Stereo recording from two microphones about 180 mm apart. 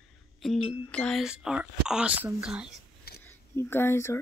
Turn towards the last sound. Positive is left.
turn(degrees=15)  # may be behind; listen again after turning